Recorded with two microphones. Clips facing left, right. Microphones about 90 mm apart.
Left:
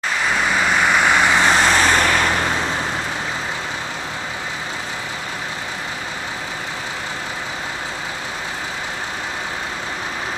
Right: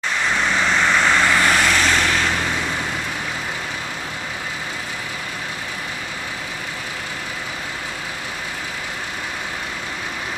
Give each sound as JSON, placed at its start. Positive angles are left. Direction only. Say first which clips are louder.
{"t": 0.5, "sound": "vehicle", "louder": "left 1 dB", "side_deg": 10}